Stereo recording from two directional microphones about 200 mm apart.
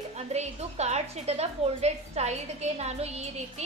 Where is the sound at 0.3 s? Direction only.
35° right (ahead or behind).